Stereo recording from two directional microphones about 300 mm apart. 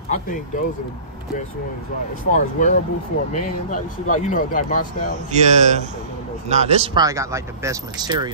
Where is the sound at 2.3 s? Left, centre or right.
Left.